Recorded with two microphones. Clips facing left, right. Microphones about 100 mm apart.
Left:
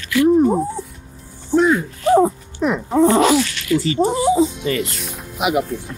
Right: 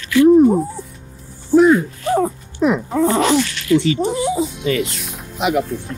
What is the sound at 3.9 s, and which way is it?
Speech, 35° left (ahead or behind).